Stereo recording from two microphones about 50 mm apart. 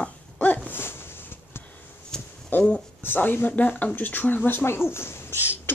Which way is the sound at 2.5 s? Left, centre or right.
Left.